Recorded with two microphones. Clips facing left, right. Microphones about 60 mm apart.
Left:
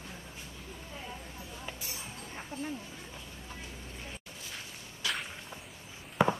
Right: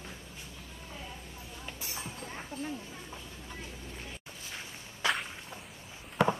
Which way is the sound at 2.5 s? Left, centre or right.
Left.